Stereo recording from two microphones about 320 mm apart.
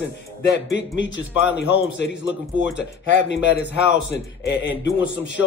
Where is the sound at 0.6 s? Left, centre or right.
Left.